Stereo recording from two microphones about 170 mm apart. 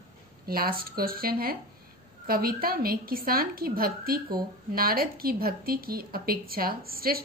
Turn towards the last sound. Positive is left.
turn(degrees=-60)  # may be behind; listen again after turning